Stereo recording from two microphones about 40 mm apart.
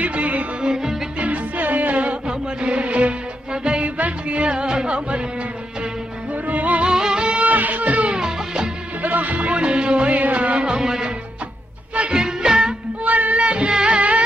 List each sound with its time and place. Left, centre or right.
0.0 s music: right
0.6 s music: right
1.2 s music: right
2.2 s music: right
6.4 s music: right
6.8 s music: centre
7.4 s music: right
8.1 s music: centre
9.0 s music: right; by 11.1 s centre
12.1 s music: centre
13.0 s music: right
13.4 s music: right